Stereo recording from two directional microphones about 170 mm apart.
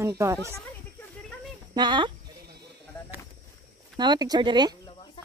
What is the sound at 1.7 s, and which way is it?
Speech, 25° right (ahead or behind).